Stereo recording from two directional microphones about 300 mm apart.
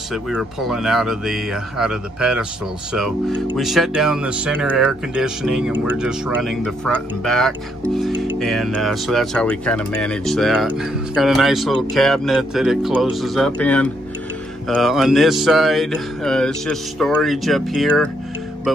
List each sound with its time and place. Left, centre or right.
0.1 s speech: centre